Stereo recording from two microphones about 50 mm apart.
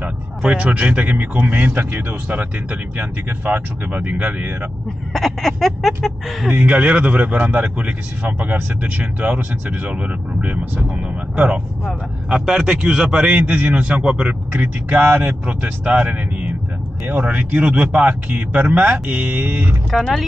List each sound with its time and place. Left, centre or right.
0.4 s speech: right
5.1 s speech: centre
6.6 s a man's voice: right
14.5 s speech: right
19.9 s speech: centre